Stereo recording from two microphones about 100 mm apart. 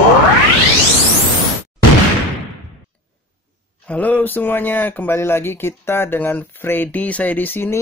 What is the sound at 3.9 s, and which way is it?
Speech, 15° left (ahead or behind).